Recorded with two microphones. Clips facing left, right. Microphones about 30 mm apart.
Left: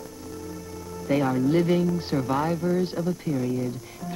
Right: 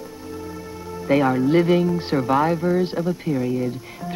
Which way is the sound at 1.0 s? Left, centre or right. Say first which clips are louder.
Right 5 dB; right.